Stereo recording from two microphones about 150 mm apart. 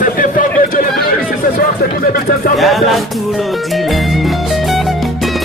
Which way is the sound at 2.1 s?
75° left (ahead or behind).